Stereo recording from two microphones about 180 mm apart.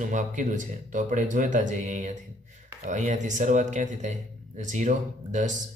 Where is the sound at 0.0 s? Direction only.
45° right (ahead or behind).